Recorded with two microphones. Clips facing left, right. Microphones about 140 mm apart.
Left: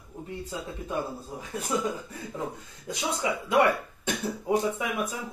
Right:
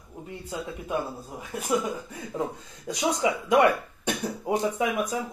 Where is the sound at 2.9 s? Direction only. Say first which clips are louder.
Right 4 dB; 20° right (ahead or behind).